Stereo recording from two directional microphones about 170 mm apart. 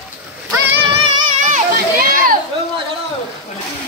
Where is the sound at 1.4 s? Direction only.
45° right (ahead or behind).